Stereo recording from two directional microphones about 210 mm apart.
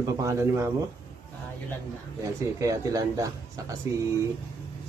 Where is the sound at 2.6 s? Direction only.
15° right (ahead or behind).